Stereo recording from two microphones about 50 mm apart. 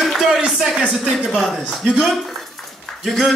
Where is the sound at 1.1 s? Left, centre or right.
Centre.